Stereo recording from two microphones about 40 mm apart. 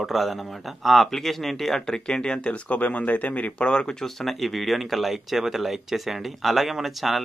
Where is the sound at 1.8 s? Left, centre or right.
Centre; by 3.7 s left.